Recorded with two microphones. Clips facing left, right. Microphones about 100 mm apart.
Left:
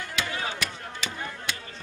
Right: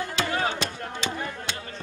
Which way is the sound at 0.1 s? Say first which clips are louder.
Right 3 dB; 35° right (ahead or behind).